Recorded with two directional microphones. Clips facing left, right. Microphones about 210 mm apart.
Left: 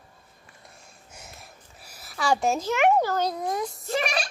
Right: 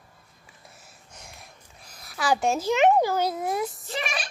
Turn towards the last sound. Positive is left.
turn(degrees=40)  # may be behind; listen again after turning